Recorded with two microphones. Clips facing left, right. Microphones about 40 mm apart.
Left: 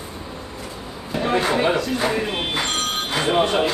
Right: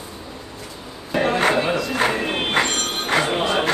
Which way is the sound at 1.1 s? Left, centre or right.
Right.